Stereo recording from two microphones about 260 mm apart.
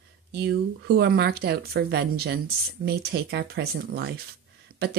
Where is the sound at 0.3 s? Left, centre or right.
Right.